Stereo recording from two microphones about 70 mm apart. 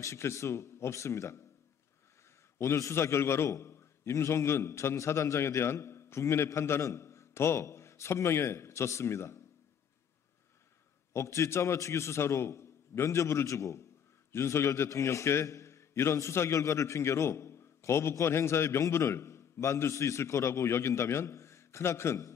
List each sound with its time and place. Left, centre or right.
0.0 s a man's voice: left
2.6 s a man's voice: left
11.1 s a man's voice: left